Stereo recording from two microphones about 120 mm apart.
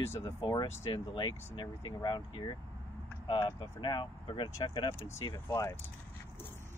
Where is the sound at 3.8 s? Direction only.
40° left (ahead or behind).